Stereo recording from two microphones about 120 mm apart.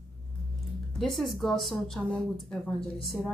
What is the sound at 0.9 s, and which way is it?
A woman's voice, centre (ahead or behind).